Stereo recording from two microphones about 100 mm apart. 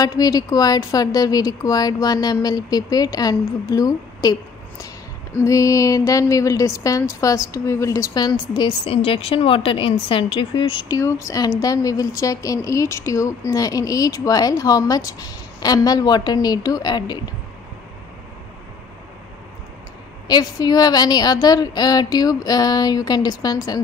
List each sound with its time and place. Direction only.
0.0 s speech: 40° left (ahead or behind)
8.8 s a woman's voice: 65° left (ahead or behind)
10.9 s speech: 30° left (ahead or behind)
20.2 s speech: 45° left (ahead or behind)